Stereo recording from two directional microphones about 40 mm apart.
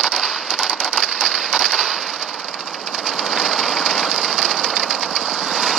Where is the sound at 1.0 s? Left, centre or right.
Right.